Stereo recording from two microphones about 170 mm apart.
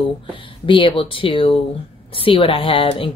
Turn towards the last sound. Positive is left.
turn(degrees=30)  # may be behind; listen again after turning